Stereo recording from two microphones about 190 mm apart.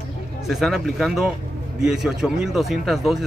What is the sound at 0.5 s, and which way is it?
Speech, centre (ahead or behind).